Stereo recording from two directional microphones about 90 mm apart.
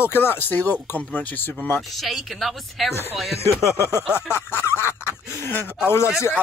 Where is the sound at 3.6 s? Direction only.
30° left (ahead or behind).